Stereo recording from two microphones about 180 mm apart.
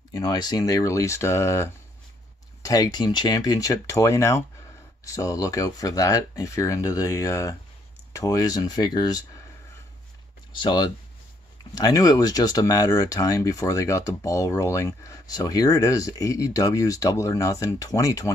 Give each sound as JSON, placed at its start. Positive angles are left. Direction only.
{"t": 0.1, "sound": "speech", "side_deg": 20}
{"t": 10.6, "sound": "speech", "side_deg": 25}